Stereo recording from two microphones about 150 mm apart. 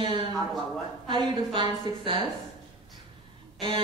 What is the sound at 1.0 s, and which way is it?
Speech, 35° right (ahead or behind).